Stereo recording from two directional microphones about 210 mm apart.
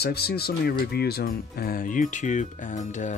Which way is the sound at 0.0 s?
50° left (ahead or behind).